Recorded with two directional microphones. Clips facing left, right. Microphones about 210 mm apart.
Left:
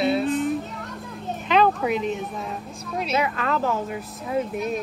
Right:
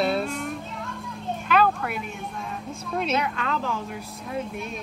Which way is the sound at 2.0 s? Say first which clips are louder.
Left 7 dB; 5° left (ahead or behind).